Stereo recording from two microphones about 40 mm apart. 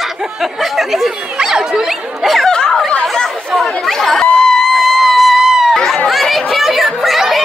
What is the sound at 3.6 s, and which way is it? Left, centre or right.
Chatter, centre.